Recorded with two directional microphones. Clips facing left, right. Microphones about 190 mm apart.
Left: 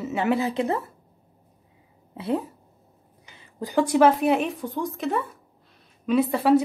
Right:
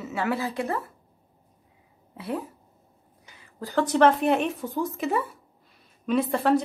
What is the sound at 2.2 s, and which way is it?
Speech, 25° left (ahead or behind).